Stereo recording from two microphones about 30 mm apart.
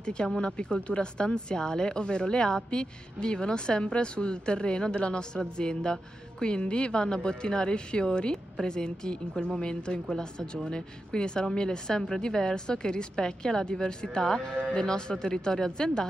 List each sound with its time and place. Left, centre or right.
0.0 s a woman's voice: left